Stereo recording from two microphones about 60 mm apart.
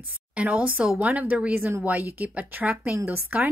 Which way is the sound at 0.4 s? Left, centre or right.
Right.